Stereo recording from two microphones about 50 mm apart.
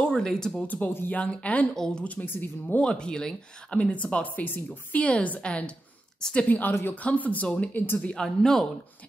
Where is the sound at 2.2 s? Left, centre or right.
Left.